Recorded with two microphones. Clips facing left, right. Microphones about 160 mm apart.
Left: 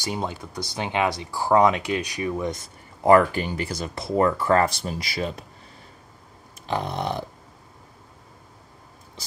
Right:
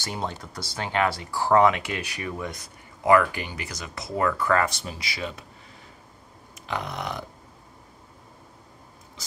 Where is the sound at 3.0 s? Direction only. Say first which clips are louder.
Left 3 dB; 35° left (ahead or behind).